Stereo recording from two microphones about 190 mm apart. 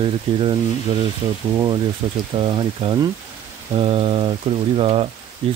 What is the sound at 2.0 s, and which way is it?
Rain, 20° right (ahead or behind).